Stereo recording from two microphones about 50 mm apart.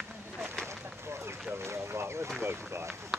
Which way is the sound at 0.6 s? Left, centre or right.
Right.